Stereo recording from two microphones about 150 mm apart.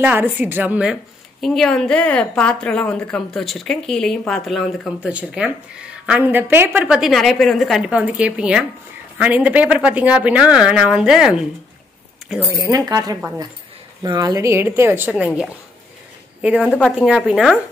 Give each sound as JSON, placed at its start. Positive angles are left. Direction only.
{"t": 0.0, "sound": "speech", "side_deg": -15}
{"t": 1.4, "sound": "a woman's voice", "side_deg": 5}
{"t": 12.6, "sound": "a woman's voice", "side_deg": -25}